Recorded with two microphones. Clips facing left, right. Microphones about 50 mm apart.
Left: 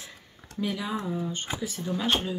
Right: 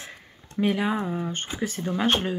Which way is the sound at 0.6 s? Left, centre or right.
Right.